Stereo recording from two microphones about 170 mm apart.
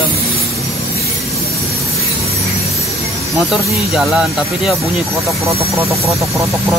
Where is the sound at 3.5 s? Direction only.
Centre (ahead or behind).